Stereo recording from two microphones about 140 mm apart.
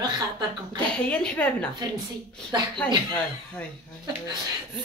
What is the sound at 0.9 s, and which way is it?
Speech, 5° left (ahead or behind).